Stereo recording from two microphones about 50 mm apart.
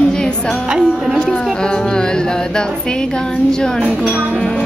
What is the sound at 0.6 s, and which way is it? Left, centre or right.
Speech, centre.